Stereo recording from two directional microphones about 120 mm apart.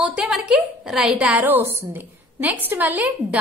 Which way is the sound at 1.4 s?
20° right (ahead or behind).